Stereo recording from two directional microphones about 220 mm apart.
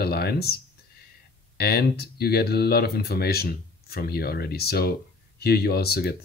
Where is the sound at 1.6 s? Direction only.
45° left (ahead or behind).